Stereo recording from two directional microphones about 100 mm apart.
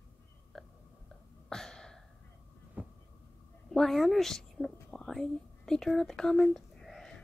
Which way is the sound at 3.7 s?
5° left (ahead or behind).